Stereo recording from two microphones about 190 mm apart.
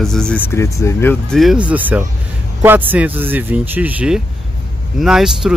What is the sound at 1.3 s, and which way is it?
Speech, centre (ahead or behind).